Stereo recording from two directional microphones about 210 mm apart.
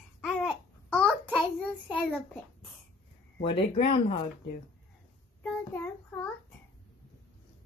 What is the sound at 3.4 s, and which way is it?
Speech, 25° left (ahead or behind).